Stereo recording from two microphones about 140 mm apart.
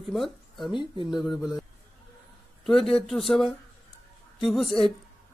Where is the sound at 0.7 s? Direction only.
35° left (ahead or behind).